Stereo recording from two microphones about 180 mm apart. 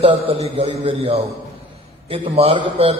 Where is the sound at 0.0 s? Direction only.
30° right (ahead or behind).